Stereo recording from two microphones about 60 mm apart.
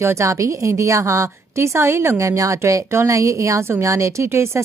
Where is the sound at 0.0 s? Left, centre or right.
Right.